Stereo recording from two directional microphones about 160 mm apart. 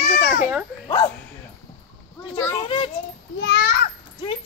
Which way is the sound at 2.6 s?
35° left (ahead or behind).